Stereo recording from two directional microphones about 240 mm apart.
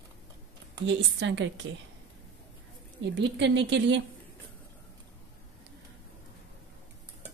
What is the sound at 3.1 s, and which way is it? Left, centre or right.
Speech, right.